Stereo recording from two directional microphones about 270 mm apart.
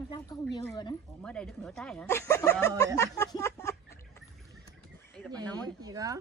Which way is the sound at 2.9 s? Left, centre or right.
Centre.